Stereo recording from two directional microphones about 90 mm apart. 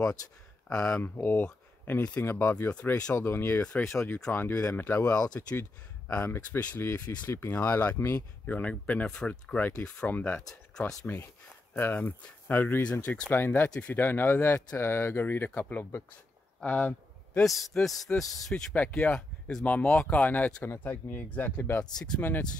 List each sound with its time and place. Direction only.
0.7 s speech: 15° left (ahead or behind)
2.7 s speech: 15° left (ahead or behind)
3.3 s speech: 25° left (ahead or behind)
8.5 s speech: 15° left (ahead or behind)
16.6 s a sound: 20° left (ahead or behind)
17.4 s a man's voice: centre (ahead or behind)
18.8 s speech: 15° left (ahead or behind)